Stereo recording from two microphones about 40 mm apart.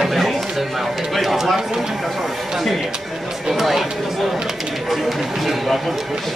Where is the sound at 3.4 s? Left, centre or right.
Centre.